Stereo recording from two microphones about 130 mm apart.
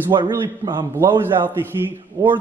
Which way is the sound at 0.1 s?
30° right (ahead or behind).